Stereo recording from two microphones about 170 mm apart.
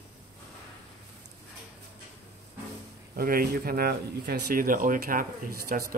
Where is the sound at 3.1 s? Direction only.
60° right (ahead or behind).